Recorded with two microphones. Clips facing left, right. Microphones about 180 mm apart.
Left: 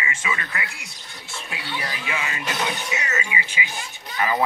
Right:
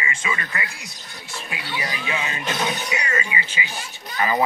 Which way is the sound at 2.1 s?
20° right (ahead or behind).